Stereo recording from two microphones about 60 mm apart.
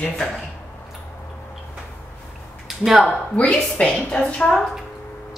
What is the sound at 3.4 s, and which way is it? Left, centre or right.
A woman's voice, left.